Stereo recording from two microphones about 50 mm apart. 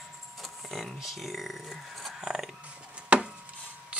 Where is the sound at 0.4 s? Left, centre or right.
Centre.